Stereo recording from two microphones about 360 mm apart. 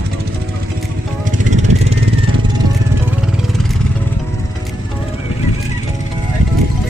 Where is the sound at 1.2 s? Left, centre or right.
Centre.